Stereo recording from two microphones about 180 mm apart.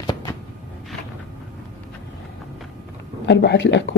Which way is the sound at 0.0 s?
25° left (ahead or behind).